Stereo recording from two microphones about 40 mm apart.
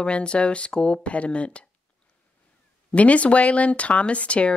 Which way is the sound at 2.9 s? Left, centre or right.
Left.